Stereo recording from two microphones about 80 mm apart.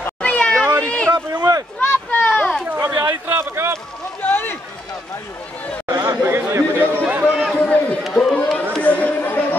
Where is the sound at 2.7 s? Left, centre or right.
Right.